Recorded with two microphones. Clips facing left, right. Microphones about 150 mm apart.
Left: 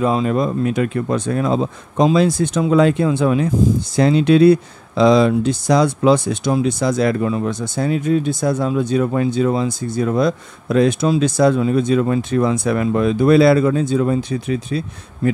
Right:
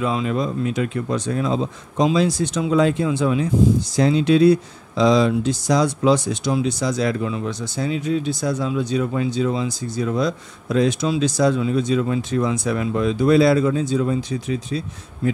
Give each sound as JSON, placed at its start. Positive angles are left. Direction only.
{"t": 0.0, "sound": "speech", "side_deg": 40}